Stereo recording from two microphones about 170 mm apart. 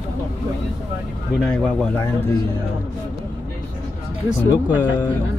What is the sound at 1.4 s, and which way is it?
Speech, 5° left (ahead or behind).